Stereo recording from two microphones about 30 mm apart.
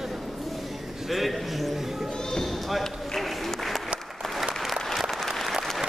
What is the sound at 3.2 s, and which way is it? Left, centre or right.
Applause, centre.